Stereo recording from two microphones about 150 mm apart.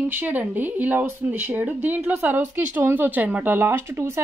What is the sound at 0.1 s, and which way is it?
Speech, 10° right (ahead or behind).